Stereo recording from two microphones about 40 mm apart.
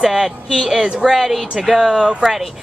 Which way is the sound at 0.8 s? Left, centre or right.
Right.